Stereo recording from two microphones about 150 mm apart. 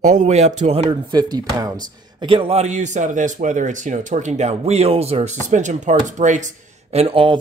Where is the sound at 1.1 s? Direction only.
25° right (ahead or behind); by 5.3 s 40° right (ahead or behind).